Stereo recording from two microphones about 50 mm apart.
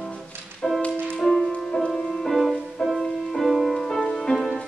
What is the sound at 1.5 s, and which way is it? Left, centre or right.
Music, centre.